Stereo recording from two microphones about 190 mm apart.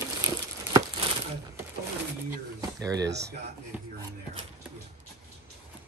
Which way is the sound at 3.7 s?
10° right (ahead or behind).